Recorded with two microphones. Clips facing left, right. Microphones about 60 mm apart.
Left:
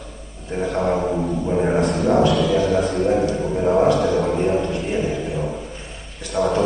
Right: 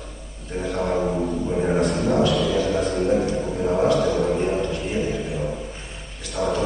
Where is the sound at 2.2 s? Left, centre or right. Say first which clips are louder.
Left 3 dB; centre.